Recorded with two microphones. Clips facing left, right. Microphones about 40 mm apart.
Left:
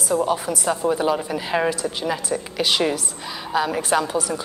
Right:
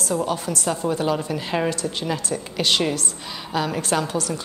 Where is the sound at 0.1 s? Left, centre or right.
Centre.